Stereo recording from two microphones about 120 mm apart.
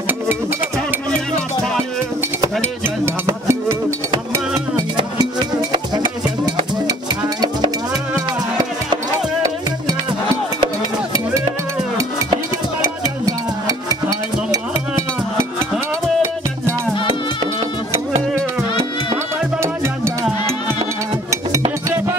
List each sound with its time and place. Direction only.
3.3 s music: 25° right (ahead or behind)
4.7 s music: 35° right (ahead or behind)
8.5 s music: 35° right (ahead or behind)
12.0 s music: 30° right (ahead or behind)